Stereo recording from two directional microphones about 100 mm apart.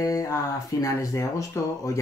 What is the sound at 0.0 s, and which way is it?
Speech, 35° left (ahead or behind).